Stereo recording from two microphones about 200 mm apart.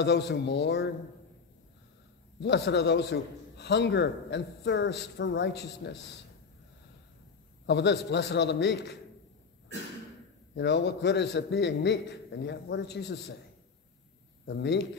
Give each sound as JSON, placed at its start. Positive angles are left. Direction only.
{"t": 0.0, "sound": "a man's voice", "side_deg": 60}
{"t": 2.4, "sound": "a man's voice", "side_deg": 60}
{"t": 7.6, "sound": "a man's voice", "side_deg": 60}
{"t": 10.5, "sound": "a man's voice", "side_deg": 60}
{"t": 14.4, "sound": "a man's voice", "side_deg": 60}